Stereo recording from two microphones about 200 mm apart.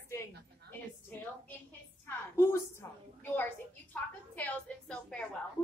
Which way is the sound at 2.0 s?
10° left (ahead or behind).